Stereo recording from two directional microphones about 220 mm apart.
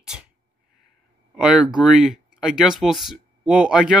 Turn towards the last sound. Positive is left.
turn(degrees=-5)  # may be behind; listen again after turning